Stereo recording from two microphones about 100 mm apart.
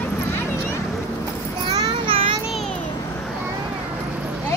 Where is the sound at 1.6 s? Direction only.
50° right (ahead or behind).